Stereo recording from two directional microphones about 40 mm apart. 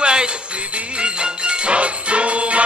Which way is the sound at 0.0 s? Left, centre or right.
Right.